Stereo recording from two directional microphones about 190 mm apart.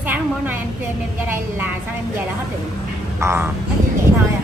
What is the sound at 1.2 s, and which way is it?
Speech, 10° right (ahead or behind).